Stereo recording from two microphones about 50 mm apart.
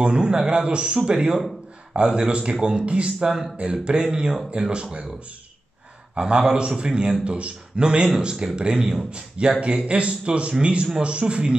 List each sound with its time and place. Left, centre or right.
0.0 s a man's voice: centre
6.1 s a man's voice: centre